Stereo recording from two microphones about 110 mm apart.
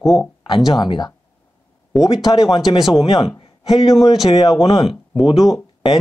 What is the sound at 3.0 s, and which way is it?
Speech, 40° left (ahead or behind).